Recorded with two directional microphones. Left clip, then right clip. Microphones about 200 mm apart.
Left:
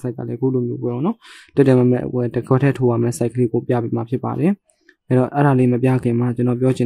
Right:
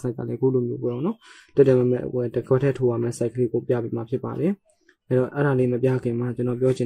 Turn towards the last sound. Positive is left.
turn(degrees=35)  # may be behind; listen again after turning